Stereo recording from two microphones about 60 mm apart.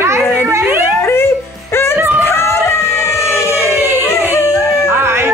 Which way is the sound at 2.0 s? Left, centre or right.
Right.